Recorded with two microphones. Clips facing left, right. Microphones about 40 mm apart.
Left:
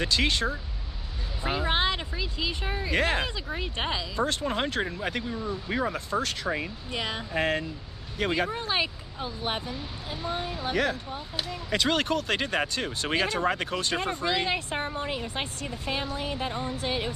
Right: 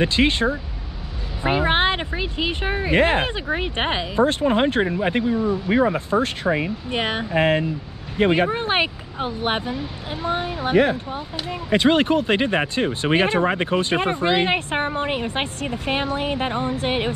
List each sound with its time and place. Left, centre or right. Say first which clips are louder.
0.0 s speech: right 7 dB; right